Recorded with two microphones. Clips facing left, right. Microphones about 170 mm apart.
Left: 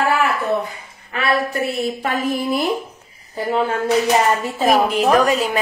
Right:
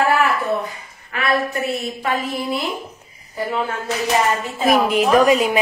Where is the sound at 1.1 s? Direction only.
30° left (ahead or behind).